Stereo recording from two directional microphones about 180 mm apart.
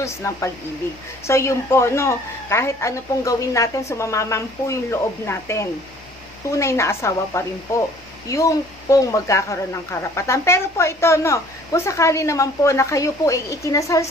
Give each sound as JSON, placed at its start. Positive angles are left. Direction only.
{"t": 0.0, "sound": "speech", "side_deg": 15}